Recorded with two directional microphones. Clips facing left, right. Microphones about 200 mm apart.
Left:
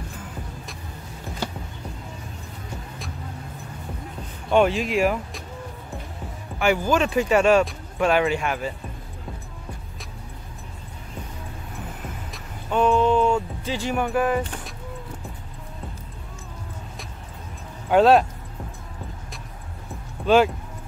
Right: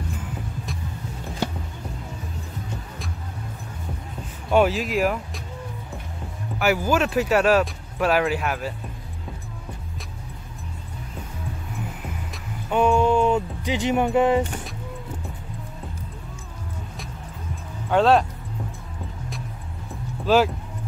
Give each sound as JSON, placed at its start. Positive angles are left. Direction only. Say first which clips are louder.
{"t": 4.5, "sound": "speech", "louder": "even", "side_deg": -5}
{"t": 6.6, "sound": "speech", "louder": "even", "side_deg": -5}
{"t": 12.7, "sound": "speech", "louder": "even", "side_deg": -10}
{"t": 17.8, "sound": "speech", "louder": "left 2 dB", "side_deg": 10}
{"t": 20.2, "sound": "speech", "louder": "left 1 dB", "side_deg": 0}